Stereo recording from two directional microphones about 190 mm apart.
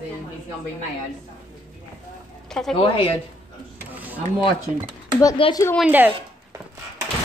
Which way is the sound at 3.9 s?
10° right (ahead or behind).